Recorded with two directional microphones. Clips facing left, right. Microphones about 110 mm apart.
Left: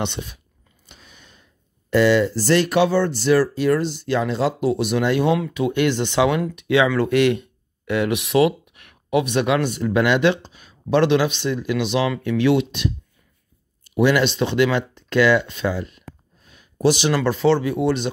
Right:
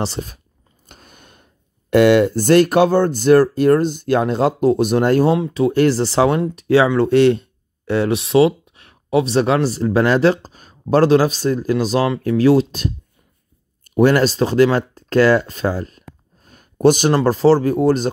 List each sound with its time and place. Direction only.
0.0 s speech: 40° right (ahead or behind)